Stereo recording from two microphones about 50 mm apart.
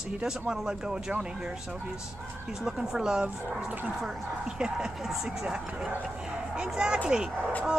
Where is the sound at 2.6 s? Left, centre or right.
Centre.